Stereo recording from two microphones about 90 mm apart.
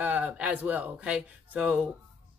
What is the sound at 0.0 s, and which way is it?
Speech, 15° right (ahead or behind).